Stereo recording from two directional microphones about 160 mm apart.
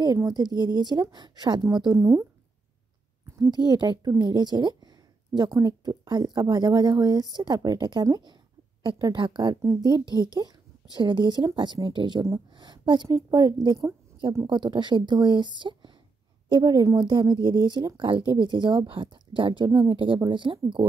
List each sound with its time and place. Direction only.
0.0 s speech: 25° right (ahead or behind)
2.0 s speech: 15° right (ahead or behind)
3.6 s a woman's voice: 25° right (ahead or behind)
14.5 s speech: 30° right (ahead or behind)